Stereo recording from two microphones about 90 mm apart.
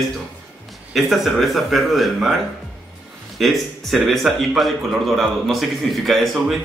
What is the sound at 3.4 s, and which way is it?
A man's voice, centre (ahead or behind).